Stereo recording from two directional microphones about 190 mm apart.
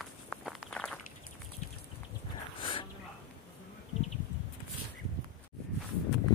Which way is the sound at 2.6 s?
25° left (ahead or behind).